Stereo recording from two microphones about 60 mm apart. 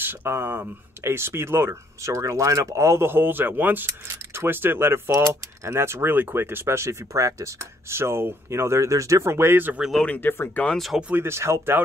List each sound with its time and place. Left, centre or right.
0.0 s speech: right
7.9 s speech: right
10.0 s speech: left
11.1 s speech: right